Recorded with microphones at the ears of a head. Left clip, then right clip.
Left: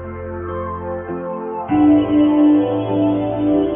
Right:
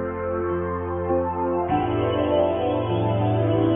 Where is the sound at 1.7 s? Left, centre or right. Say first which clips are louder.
Left 8 dB; left.